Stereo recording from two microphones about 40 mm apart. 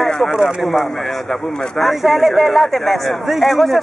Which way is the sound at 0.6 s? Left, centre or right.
Centre.